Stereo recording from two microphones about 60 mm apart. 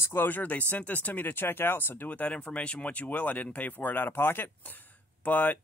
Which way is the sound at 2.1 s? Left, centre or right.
Left.